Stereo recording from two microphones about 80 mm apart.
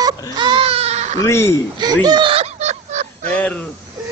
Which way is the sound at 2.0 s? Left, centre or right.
Right.